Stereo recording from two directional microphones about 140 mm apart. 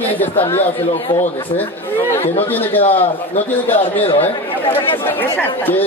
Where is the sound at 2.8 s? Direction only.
45° left (ahead or behind).